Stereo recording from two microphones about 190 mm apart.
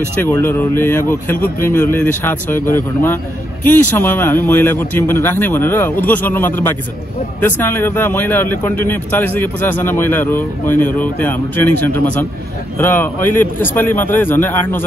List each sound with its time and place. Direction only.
0.2 s a man's voice: 10° left (ahead or behind)
12.7 s a man's voice: 10° left (ahead or behind)